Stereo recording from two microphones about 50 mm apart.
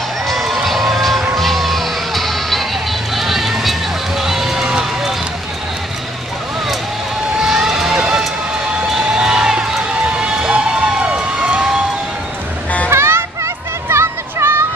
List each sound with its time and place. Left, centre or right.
0.3 s run: centre
1.3 s music: centre
4.2 s a sound: centre
4.6 s run: centre
7.3 s run: centre
8.8 s crowd: centre
10.1 s a sound: centre
12.9 s children playing: right